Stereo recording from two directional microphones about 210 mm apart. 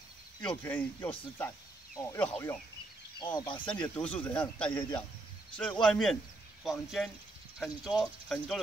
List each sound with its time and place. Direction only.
0.4 s speech: 5° left (ahead or behind)
3.2 s speech: 20° left (ahead or behind)
3.6 s speech: 5° left (ahead or behind)